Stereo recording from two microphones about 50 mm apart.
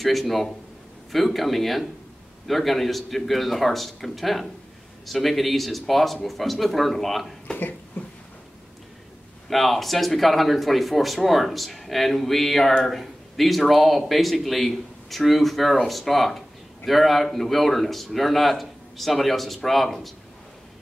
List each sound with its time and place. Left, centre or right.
0.0 s speech: centre
7.5 s a sound: left
9.5 s speech: centre